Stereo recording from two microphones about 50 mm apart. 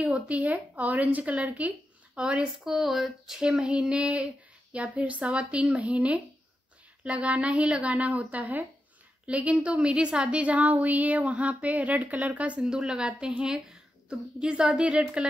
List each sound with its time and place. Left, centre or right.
0.3 s a woman's voice: right
2.6 s a woman's voice: centre; by 15.2 s right